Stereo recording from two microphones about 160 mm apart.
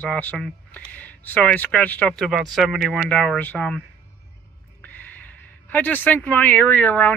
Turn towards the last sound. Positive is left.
turn(degrees=10)  # may be behind; listen again after turning